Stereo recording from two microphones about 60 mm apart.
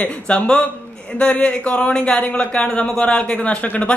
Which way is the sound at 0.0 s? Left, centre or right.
Centre.